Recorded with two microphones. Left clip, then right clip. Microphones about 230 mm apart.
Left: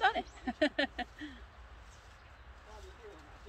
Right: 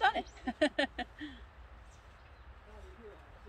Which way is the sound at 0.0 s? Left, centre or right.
Centre.